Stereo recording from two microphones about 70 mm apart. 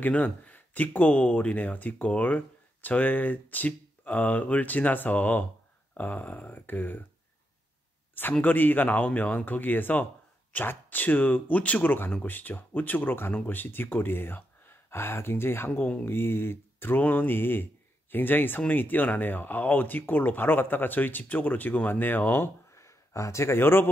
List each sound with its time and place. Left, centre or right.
0.0 s speech: left
8.1 s speech: left
22.8 s speech: left